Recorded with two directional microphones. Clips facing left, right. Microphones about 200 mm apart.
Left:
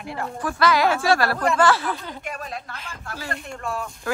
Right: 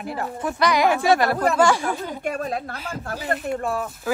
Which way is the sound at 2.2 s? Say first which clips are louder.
Right 9 dB; 45° right (ahead or behind).